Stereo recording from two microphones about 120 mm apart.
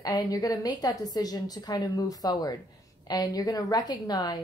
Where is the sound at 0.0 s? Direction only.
35° left (ahead or behind).